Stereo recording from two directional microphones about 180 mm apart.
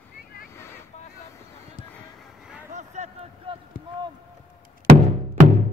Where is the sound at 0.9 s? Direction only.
40° left (ahead or behind).